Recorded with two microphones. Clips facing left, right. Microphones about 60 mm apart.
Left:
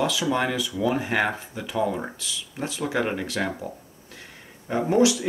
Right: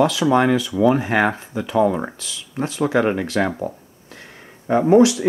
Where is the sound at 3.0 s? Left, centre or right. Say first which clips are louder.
Right 7 dB; right.